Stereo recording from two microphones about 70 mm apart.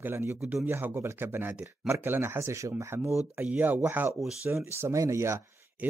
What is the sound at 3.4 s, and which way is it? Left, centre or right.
Speech, right.